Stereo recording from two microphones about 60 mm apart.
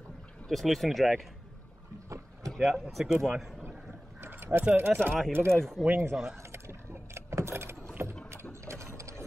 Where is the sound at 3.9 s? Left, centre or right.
Right.